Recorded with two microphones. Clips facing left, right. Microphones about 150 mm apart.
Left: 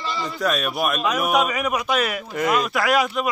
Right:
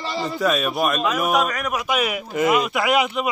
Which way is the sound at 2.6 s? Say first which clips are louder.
Even; 20° right (ahead or behind).